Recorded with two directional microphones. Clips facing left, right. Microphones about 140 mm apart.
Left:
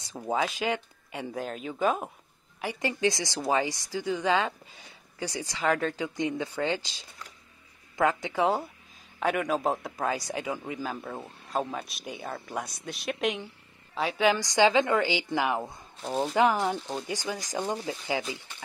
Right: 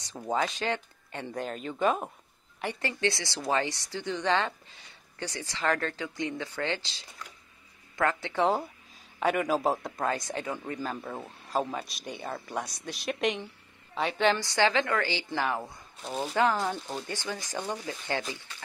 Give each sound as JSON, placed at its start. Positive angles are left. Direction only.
{"t": 0.2, "sound": "a woman's voice", "side_deg": 5}
{"t": 8.4, "sound": "a woman's voice", "side_deg": 0}
{"t": 16.7, "sound": "speech", "side_deg": 0}
{"t": 17.0, "sound": "a woman's voice", "side_deg": 15}